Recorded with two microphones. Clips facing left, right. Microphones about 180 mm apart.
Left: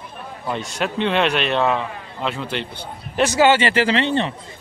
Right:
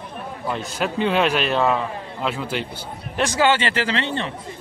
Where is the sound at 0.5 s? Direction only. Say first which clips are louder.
Left 1 dB; 5° right (ahead or behind).